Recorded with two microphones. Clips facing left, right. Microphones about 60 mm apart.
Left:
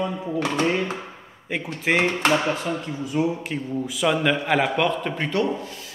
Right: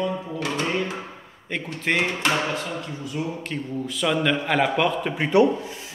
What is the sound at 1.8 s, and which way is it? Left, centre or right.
Speech, centre.